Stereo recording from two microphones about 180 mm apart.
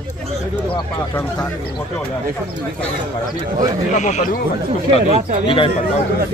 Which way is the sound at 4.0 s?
40° left (ahead or behind).